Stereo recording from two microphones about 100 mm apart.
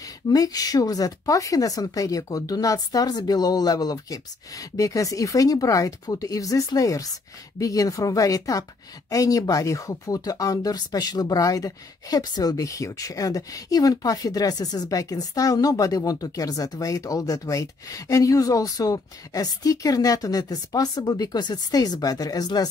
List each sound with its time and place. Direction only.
0.3 s speech: 40° left (ahead or behind)